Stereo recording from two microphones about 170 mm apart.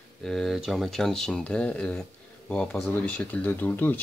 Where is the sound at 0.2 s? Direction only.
Centre (ahead or behind).